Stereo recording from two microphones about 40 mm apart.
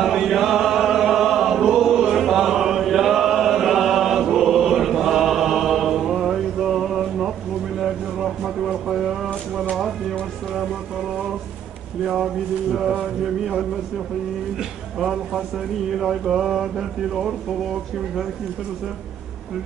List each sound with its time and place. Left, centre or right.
0.0 s choir: centre
8.8 s a sound: centre
15.0 s speech: centre